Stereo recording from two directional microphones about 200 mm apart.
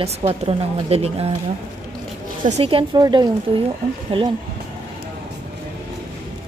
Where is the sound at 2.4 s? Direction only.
30° right (ahead or behind).